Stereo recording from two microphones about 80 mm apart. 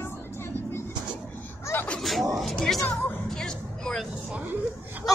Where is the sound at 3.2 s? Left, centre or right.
Centre.